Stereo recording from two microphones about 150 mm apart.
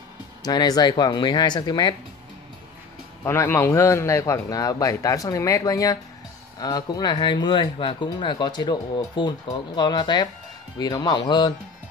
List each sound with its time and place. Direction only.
0.4 s speech: 25° left (ahead or behind)
3.3 s speech: 15° left (ahead or behind); by 11.5 s 30° left (ahead or behind)